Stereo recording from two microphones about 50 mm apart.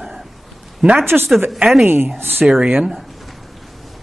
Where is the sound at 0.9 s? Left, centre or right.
Right.